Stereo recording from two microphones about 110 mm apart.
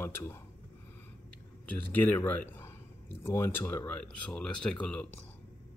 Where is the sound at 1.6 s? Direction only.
15° left (ahead or behind).